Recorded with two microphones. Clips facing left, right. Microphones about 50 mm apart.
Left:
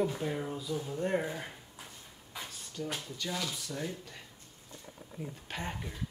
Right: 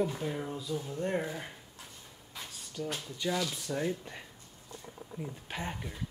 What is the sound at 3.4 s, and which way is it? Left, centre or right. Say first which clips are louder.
Speech: right 3 dB; centre.